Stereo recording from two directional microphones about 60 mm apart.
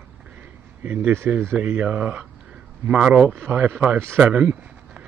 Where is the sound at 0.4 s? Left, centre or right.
Right.